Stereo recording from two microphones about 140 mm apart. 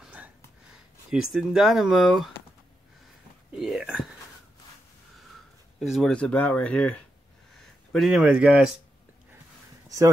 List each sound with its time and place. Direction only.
0.0 s a sound: 10° right (ahead or behind)
1.1 s speech: 5° right (ahead or behind)
3.5 s whispering: 5° right (ahead or behind)
5.8 s speech: centre (ahead or behind)
7.5 s a sound: 5° left (ahead or behind)
8.2 s speech: 10° right (ahead or behind)
9.8 s speech: 25° right (ahead or behind)